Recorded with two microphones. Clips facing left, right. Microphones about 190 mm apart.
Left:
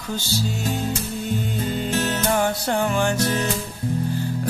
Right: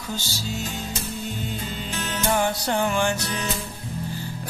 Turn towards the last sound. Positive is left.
turn(degrees=40)  # may be behind; listen again after turning